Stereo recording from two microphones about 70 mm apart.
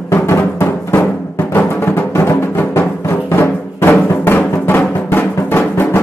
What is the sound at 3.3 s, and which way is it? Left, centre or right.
Music, left.